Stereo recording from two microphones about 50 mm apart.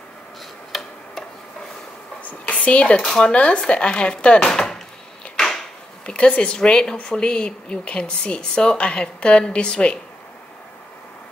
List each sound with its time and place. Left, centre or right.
0.7 s tick-tock: centre
2.2 s a sound: left
3.0 s speech: centre
3.3 s speech: left
5.3 s a sound: centre
6.0 s speech: left